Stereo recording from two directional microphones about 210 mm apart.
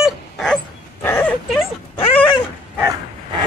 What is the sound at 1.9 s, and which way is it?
Dog, 25° left (ahead or behind).